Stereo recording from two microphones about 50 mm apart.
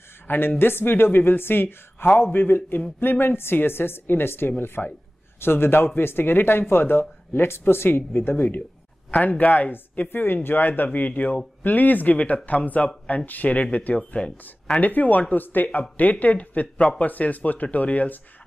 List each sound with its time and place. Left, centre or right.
0.3 s speech: left
13.9 s speech: centre
14.8 s speech: left